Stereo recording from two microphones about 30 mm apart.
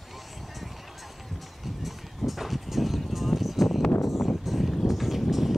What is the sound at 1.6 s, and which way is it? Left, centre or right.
Music, centre.